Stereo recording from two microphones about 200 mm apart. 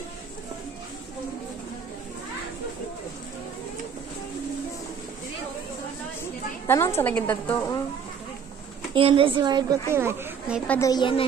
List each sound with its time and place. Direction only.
6.7 s a woman's voice: 15° left (ahead or behind)
8.9 s a woman's voice: 25° right (ahead or behind)
10.7 s a woman's voice: 15° left (ahead or behind)